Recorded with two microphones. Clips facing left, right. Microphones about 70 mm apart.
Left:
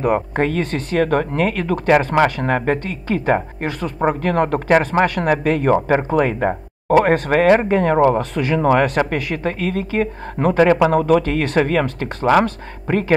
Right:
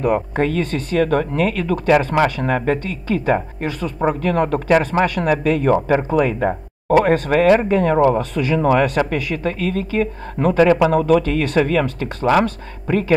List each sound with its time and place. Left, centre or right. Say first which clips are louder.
0.0 s speech: even; left